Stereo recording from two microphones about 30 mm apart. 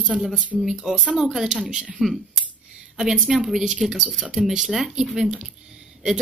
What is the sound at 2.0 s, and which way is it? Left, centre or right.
Speech, right.